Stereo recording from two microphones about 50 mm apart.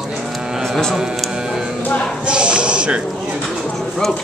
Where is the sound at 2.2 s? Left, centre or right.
Centre.